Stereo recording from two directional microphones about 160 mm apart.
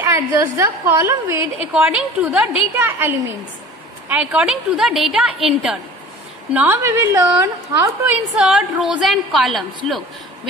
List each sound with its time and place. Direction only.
0.0 s a woman's voice: 15° right (ahead or behind); by 10.5 s centre (ahead or behind)